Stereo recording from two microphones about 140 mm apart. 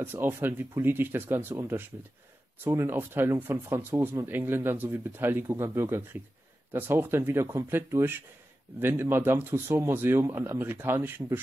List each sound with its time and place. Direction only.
0.0 s speech: 15° right (ahead or behind)